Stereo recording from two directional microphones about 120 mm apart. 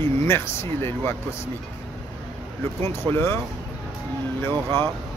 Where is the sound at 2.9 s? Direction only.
20° left (ahead or behind).